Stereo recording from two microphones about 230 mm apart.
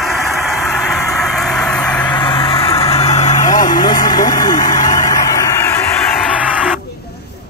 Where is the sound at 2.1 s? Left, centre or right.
Left.